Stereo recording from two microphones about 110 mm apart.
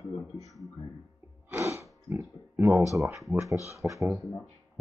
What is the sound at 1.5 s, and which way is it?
Speech, 25° right (ahead or behind).